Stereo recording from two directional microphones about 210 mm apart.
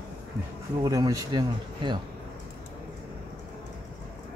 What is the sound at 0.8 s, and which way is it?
Speech, 15° right (ahead or behind).